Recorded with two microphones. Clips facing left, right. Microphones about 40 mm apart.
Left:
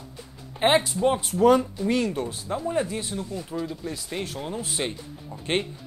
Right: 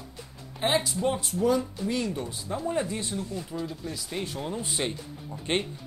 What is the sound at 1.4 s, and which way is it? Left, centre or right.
Speech, left.